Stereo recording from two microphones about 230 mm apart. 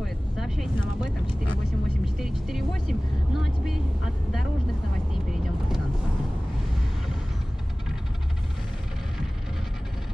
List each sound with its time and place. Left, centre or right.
0.0 s vehicle: centre
2.0 s vehicle: centre